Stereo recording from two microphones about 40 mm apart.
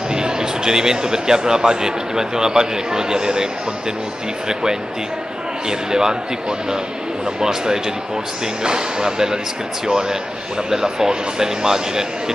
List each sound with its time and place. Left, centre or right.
0.1 s speech: centre
5.7 s speech: centre
7.3 s speech: centre